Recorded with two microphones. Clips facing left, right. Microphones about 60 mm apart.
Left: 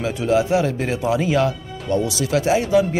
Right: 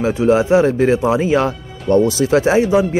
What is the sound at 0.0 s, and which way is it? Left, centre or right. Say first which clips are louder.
Speech: right 5 dB; right.